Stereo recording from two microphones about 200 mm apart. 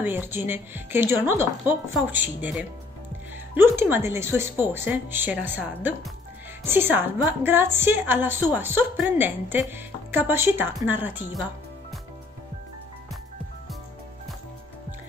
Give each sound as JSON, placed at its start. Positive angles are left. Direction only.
{"t": 0.0, "sound": "speech", "side_deg": -10}
{"t": 3.7, "sound": "speech", "side_deg": -10}